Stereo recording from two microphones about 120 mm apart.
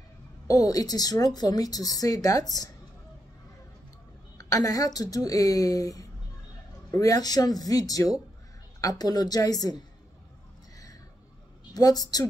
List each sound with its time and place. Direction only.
0.5 s speech: 30° left (ahead or behind)
4.4 s a woman's voice: 30° left (ahead or behind)
11.7 s speech: 30° left (ahead or behind)